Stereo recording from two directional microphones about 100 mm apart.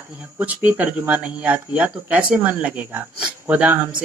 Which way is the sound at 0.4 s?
15° right (ahead or behind).